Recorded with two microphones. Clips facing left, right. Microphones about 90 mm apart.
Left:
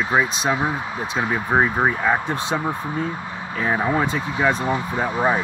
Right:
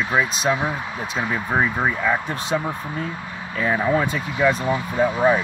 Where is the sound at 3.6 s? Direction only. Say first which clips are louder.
Right 1 dB; 30° left (ahead or behind).